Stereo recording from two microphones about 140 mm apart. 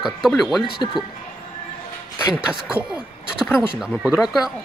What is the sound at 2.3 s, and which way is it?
Speech, 5° right (ahead or behind).